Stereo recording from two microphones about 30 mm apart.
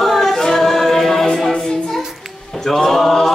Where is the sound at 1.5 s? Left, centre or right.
Centre.